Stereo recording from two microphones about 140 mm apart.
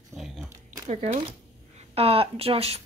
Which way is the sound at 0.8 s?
55° right (ahead or behind).